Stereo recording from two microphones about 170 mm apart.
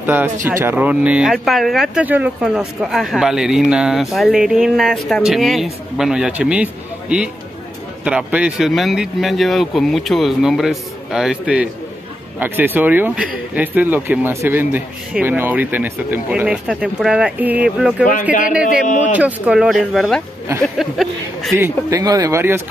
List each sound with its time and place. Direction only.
0.0 s speech: 10° right (ahead or behind)
18.9 s speech: 45° left (ahead or behind)
19.1 s speech: 10° right (ahead or behind)
21.5 s speech: 15° right (ahead or behind)